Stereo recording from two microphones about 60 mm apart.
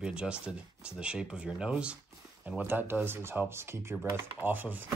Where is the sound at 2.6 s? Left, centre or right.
Right.